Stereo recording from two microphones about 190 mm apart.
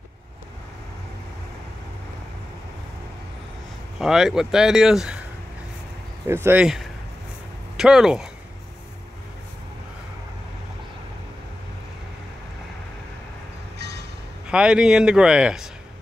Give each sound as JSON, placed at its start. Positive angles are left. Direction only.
{"t": 4.0, "sound": "speech", "side_deg": 0}
{"t": 6.2, "sound": "speech", "side_deg": -10}
{"t": 13.7, "sound": "train", "side_deg": -60}
{"t": 14.5, "sound": "speech", "side_deg": -5}